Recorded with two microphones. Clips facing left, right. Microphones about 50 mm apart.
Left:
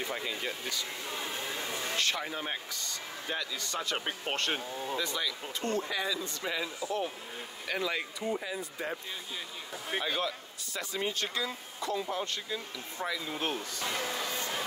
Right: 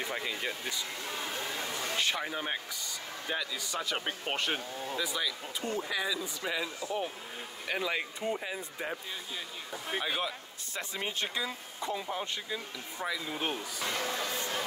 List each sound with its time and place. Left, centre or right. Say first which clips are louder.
0.0 s speech: even; centre
1.0 s a sound: even; centre
2.0 s speech: right 1 dB; centre
4.6 s speech: left 1 dB; centre
4.9 s speech: right 1 dB; centre
8.2 s speech: even; right
9.7 s speech: even; centre
10.0 s speech: left 2 dB; centre
10.7 s speech: left 2 dB; right; by 14.6 s centre